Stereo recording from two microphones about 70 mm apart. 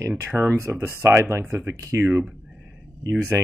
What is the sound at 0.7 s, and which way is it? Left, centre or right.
Speech, right.